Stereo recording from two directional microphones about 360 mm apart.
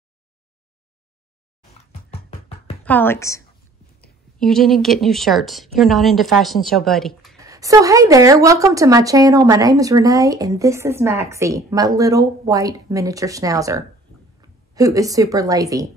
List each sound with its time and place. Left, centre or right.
2.8 s a woman's voice: centre